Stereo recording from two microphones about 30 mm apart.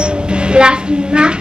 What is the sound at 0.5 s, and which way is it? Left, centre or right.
Speech, right.